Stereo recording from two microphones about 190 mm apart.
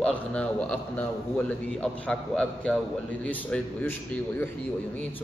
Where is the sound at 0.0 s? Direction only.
5° left (ahead or behind).